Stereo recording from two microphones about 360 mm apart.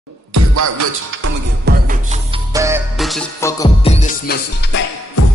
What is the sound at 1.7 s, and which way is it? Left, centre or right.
Music, right.